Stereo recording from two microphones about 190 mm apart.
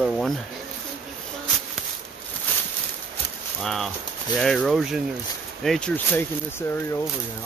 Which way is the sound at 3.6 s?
Centre (ahead or behind).